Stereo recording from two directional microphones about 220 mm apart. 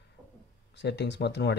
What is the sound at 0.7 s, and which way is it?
Speech, 50° left (ahead or behind).